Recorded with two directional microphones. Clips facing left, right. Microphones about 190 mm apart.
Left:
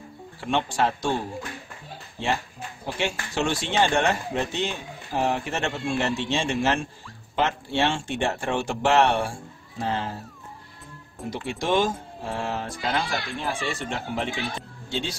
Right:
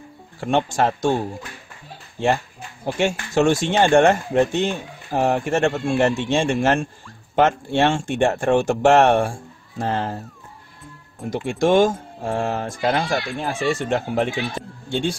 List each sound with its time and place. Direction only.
0.4 s speech: 45° right (ahead or behind)
3.0 s speech: 45° right (ahead or behind)
11.2 s speech: 50° right (ahead or behind)